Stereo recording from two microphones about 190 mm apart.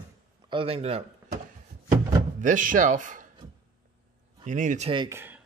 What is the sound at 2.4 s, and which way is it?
Speech, 45° right (ahead or behind).